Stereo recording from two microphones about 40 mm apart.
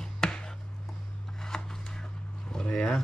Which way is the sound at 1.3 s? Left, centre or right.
Centre.